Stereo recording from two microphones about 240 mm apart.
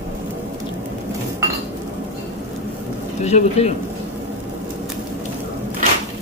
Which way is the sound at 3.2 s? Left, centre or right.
Left.